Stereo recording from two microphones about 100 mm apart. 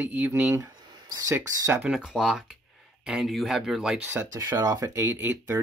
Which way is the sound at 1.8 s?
10° right (ahead or behind).